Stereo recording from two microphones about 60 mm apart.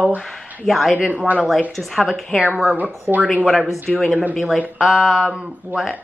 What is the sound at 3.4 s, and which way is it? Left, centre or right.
A woman's voice, centre.